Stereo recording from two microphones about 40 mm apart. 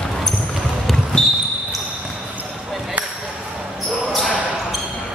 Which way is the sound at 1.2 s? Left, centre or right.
Centre.